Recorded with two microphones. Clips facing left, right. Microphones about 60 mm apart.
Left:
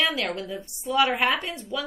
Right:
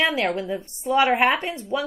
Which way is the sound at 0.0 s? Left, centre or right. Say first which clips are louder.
Right 4 dB; right.